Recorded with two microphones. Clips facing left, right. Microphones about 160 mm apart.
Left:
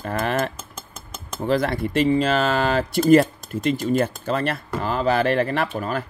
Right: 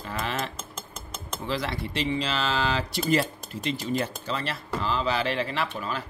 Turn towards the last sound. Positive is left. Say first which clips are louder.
# left 6 dB
turn(degrees=50)  # may be behind; listen again after turning